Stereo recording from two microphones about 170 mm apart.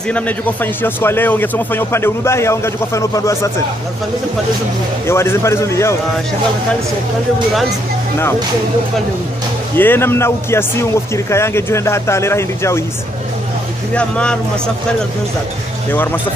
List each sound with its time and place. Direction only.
0.1 s a man's voice: 10° left (ahead or behind)
5.0 s a man's voice: 15° left (ahead or behind)
9.8 s a man's voice: 15° left (ahead or behind)
13.9 s a man's voice: 5° left (ahead or behind)